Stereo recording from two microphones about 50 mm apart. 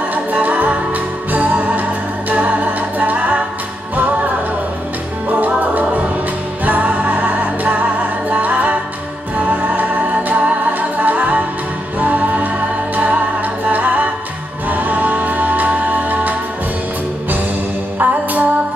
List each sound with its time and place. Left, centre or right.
0.1 s music: right
5.6 s music: right
17.9 s music: right